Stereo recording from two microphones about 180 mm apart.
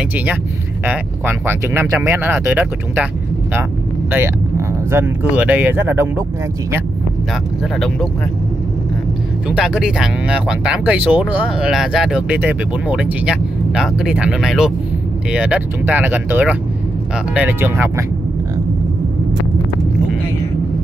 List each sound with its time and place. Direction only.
0.8 s speech: 10° right (ahead or behind)
4.1 s speech: 10° right (ahead or behind)
7.7 s speech: 5° left (ahead or behind)
9.5 s speech: 5° right (ahead or behind)